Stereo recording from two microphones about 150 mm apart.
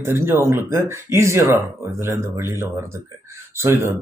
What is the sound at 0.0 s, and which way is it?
Speech, 15° right (ahead or behind).